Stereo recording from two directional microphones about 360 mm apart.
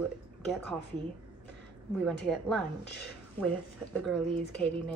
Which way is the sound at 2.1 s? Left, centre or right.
Centre.